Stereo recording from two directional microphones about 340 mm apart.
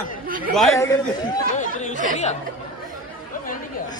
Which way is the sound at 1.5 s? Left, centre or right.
Left.